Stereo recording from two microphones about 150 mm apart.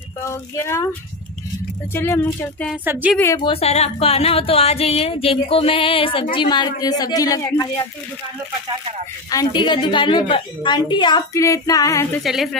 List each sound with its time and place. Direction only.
0.2 s a woman's voice: 20° left (ahead or behind)
2.0 s speech: 15° left (ahead or behind)
2.8 s speech: 10° right (ahead or behind)
3.3 s a woman's voice: 35° left (ahead or behind); by 7.9 s 20° left (ahead or behind)
9.3 s a woman's voice: 30° left (ahead or behind)
12.2 s a woman's voice: centre (ahead or behind)